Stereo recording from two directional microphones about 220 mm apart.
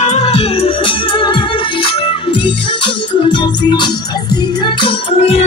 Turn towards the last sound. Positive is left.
turn(degrees=25)  # may be behind; listen again after turning